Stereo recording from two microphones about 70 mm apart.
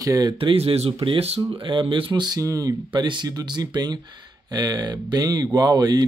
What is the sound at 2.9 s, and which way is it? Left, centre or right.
Speech, right.